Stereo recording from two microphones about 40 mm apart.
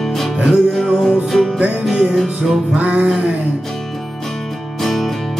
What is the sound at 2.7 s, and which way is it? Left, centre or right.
Music, right.